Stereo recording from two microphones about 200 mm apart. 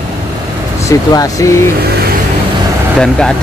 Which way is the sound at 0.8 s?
15° left (ahead or behind).